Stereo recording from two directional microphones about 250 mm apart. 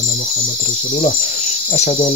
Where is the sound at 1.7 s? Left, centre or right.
Left.